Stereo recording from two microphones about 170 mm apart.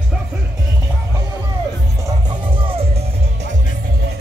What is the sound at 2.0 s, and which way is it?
Music, 25° right (ahead or behind).